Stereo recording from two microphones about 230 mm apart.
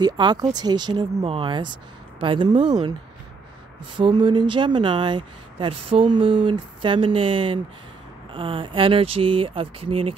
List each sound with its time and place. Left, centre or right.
0.0 s speech: centre
4.0 s speech: right